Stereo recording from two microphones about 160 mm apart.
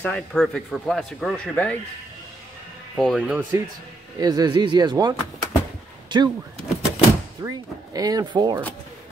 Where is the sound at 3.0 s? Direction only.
Centre (ahead or behind).